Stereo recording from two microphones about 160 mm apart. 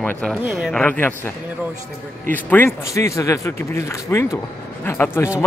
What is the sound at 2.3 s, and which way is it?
Speech, 10° left (ahead or behind).